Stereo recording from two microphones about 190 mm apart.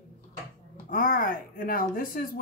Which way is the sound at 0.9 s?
45° left (ahead or behind).